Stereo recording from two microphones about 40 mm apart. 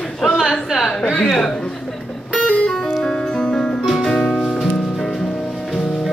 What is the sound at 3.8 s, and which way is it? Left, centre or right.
Music, centre.